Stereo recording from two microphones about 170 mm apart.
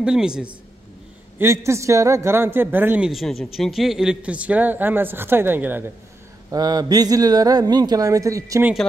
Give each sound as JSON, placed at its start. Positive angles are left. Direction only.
{"t": 0.0, "sound": "a woman's voice", "side_deg": -5}
{"t": 1.4, "sound": "a man's voice", "side_deg": -15}
{"t": 6.5, "sound": "a man's voice", "side_deg": -20}